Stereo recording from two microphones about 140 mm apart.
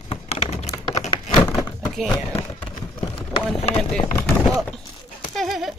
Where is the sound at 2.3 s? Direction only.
35° left (ahead or behind).